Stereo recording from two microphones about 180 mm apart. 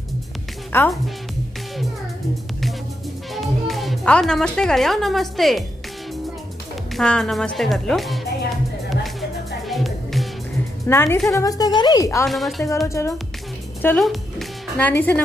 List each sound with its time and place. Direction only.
0.7 s a woman's voice: 10° left (ahead or behind)
3.3 s speech: centre (ahead or behind)
7.0 s speech: 5° left (ahead or behind)
9.7 s music: centre (ahead or behind)
10.9 s a woman's voice: 15° left (ahead or behind)
12.3 s speech: centre (ahead or behind)
12.8 s a woman's voice: 15° left (ahead or behind)
13.8 s a woman's voice: centre (ahead or behind)